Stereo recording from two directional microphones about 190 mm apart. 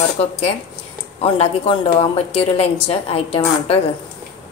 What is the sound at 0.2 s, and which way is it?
A woman's voice, 30° left (ahead or behind).